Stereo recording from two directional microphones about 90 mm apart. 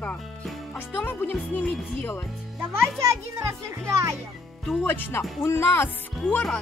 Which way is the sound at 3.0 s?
35° right (ahead or behind).